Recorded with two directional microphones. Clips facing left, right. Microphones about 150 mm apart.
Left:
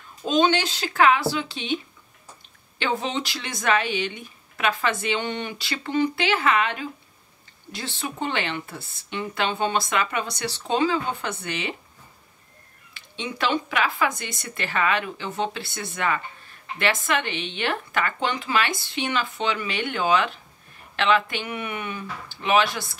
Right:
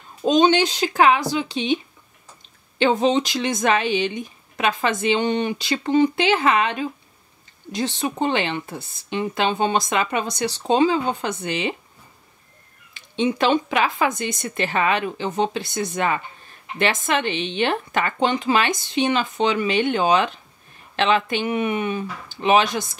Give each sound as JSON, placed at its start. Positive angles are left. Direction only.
{"t": 0.2, "sound": "speech", "side_deg": -20}
{"t": 2.8, "sound": "speech", "side_deg": -20}
{"t": 12.9, "sound": "speech", "side_deg": -20}